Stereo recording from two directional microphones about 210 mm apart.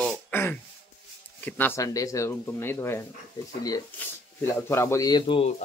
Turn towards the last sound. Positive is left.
turn(degrees=25)  # may be behind; listen again after turning